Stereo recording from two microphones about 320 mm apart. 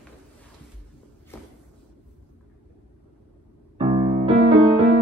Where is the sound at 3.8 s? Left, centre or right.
Centre.